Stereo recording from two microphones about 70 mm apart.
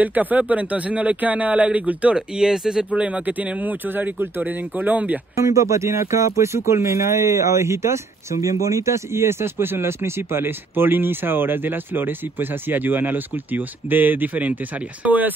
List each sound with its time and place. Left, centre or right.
0.0 s speech: right
2.1 s speech: centre
2.9 s speech: centre
5.4 s speech: right